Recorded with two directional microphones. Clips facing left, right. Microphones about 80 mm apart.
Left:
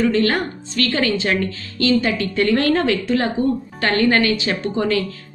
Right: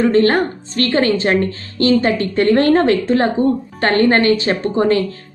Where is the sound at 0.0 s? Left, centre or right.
Right.